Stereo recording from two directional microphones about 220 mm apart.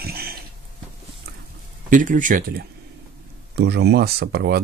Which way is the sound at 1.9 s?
35° right (ahead or behind).